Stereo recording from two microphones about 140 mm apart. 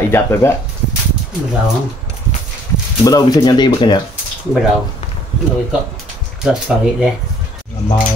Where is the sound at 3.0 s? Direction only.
25° left (ahead or behind).